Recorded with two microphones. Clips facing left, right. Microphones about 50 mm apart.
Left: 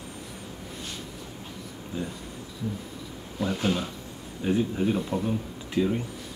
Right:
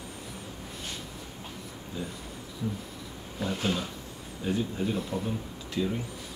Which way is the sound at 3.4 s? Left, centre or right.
Centre.